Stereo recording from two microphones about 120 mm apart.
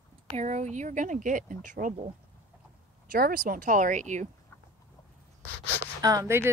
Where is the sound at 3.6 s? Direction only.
90° right.